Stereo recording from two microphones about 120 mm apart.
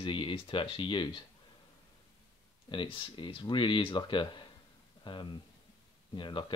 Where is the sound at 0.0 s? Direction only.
45° left (ahead or behind).